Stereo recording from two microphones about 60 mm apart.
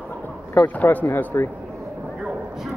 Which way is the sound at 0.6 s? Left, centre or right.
Left.